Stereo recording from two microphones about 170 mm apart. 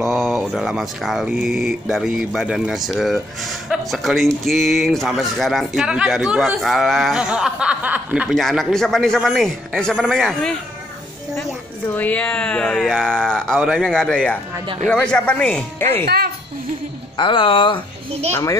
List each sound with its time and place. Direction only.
0.0 s speech: centre (ahead or behind)
11.9 s speech: 10° left (ahead or behind)
17.2 s speech: 30° left (ahead or behind)
18.3 s speech: 20° left (ahead or behind)